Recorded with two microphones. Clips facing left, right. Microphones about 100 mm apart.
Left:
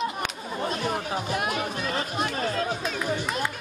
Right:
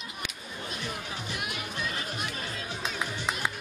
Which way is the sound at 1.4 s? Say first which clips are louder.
Left 7 dB; 45° left (ahead or behind).